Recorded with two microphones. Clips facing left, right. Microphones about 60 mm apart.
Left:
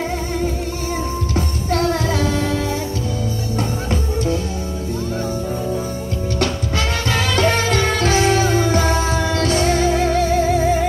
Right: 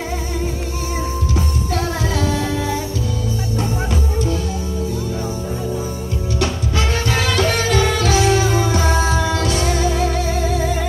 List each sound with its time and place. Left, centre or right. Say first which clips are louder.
1.7 s music: left 5 dB; left
7.1 s music: left 2 dB; left